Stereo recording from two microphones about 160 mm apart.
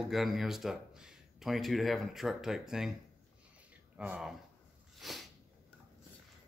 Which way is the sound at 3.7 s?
10° right (ahead or behind).